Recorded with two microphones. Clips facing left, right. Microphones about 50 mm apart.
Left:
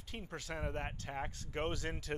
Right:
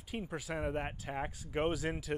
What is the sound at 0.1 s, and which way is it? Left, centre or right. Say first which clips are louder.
Speech: right 5 dB; centre.